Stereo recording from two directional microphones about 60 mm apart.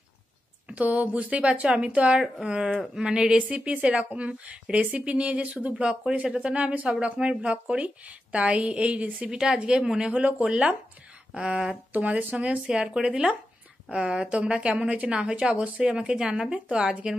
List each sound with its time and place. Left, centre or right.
0.7 s a woman's voice: right
5.9 s a woman's voice: centre